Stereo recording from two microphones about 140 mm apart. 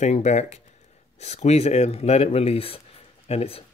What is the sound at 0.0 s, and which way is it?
Speech, 55° left (ahead or behind).